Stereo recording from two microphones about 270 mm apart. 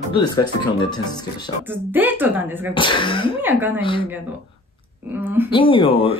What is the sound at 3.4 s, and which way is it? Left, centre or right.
Speech, centre.